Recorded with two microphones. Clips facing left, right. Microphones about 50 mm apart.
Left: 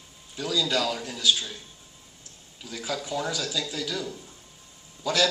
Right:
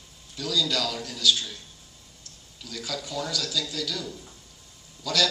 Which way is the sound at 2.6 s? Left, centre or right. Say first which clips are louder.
Left 2 dB; left.